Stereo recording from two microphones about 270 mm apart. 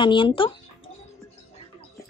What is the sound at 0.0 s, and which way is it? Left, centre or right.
Speech, centre.